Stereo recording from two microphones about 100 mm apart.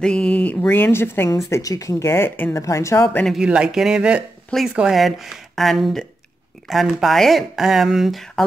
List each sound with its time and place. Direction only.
0.0 s a sound: 10° left (ahead or behind)
1.5 s speech: 35° left (ahead or behind)
3.3 s speech: 10° right (ahead or behind)